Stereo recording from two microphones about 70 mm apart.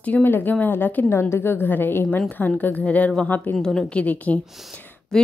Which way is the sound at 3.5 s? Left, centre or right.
Centre.